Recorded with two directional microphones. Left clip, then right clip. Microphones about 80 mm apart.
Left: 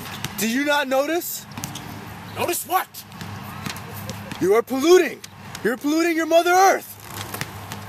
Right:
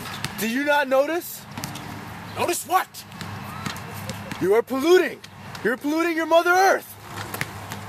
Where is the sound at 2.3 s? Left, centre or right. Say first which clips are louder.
Right 1 dB; centre.